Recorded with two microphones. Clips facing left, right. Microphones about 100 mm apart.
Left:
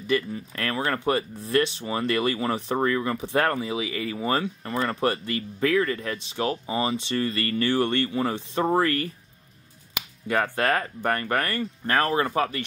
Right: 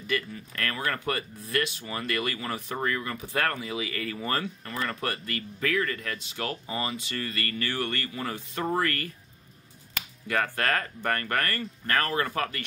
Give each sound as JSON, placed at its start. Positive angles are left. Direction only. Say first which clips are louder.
{"t": 0.0, "sound": "speech", "louder": "left 6 dB", "side_deg": 25}
{"t": 3.9, "sound": "speech", "louder": "left 5 dB", "side_deg": 15}
{"t": 4.6, "sound": "speech", "louder": "left 7 dB", "side_deg": 30}
{"t": 10.2, "sound": "speech", "louder": "left 4 dB", "side_deg": 20}